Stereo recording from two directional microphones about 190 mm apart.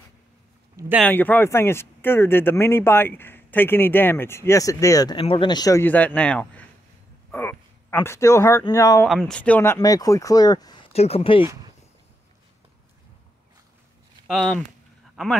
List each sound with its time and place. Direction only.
0.9 s speech: 10° left (ahead or behind)
9.0 s speech: 5° left (ahead or behind); by 10.8 s 20° left (ahead or behind)
10.9 s speech: 30° left (ahead or behind)
14.2 s speech: centre (ahead or behind)